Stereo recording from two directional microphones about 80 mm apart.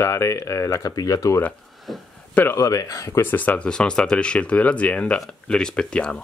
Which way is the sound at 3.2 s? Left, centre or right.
Left.